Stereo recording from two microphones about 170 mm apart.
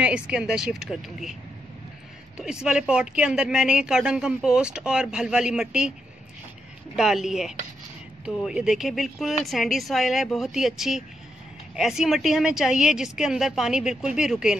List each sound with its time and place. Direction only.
0.0 s speech: 5° right (ahead or behind)
2.3 s speech: 5° right (ahead or behind)
7.0 s speech: 5° right (ahead or behind)